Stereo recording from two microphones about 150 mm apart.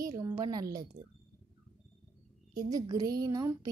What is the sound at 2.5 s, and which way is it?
A woman's voice, 25° right (ahead or behind).